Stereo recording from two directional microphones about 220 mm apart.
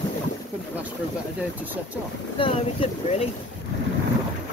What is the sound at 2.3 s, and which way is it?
Speech, 25° left (ahead or behind).